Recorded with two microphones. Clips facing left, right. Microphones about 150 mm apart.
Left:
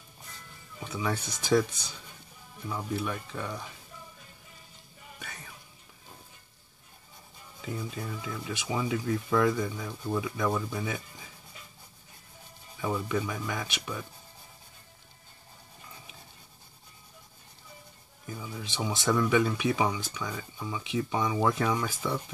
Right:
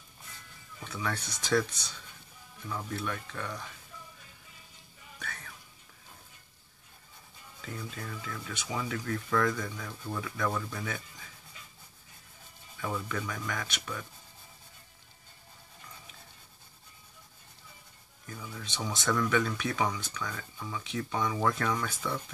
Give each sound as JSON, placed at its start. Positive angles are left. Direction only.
{"t": 0.7, "sound": "music", "side_deg": 15}
{"t": 1.1, "sound": "speech", "side_deg": 10}
{"t": 5.2, "sound": "music", "side_deg": 15}
{"t": 7.6, "sound": "speech", "side_deg": 10}
{"t": 12.7, "sound": "speech", "side_deg": 15}
{"t": 18.2, "sound": "speech", "side_deg": 10}